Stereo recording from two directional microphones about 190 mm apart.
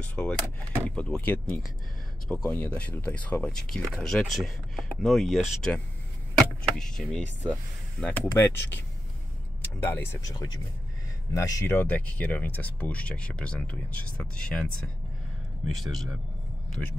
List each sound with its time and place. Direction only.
0.0 s speech: 5° left (ahead or behind)
9.8 s speech: 15° left (ahead or behind)
15.8 s speech: centre (ahead or behind)